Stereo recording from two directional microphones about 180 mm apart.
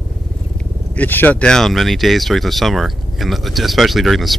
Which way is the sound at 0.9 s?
10° left (ahead or behind).